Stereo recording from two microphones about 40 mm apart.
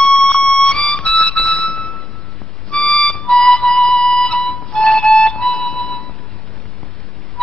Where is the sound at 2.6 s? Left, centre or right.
Centre.